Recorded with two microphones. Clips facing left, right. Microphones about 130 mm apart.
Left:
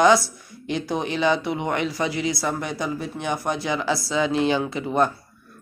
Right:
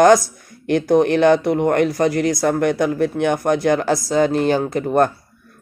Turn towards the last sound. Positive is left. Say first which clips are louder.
# right 5 dB
turn(degrees=-50)  # may be behind; listen again after turning